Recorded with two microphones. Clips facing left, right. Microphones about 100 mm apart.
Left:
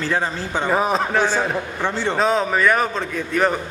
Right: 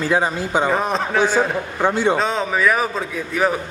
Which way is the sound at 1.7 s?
15° right (ahead or behind).